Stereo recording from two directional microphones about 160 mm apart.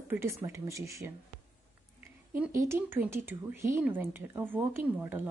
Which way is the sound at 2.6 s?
15° right (ahead or behind).